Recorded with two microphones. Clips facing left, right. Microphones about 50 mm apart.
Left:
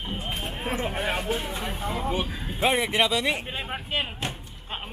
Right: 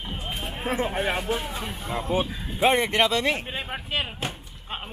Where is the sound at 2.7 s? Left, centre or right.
Centre.